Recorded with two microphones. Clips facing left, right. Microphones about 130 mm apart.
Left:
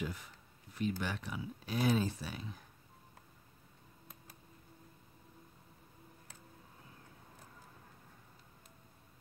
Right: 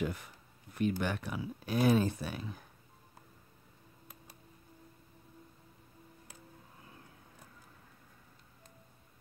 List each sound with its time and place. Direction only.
0.0 s speech: 55° right (ahead or behind)